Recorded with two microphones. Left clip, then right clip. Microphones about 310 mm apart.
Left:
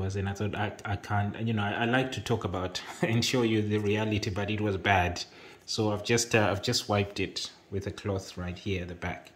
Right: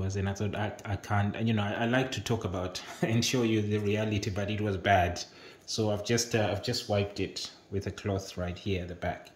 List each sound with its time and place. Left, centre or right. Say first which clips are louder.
0.0 s speech: left 1 dB; centre